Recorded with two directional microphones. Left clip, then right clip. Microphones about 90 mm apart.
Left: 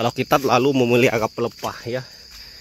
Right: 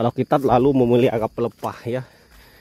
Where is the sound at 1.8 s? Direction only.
45° right (ahead or behind).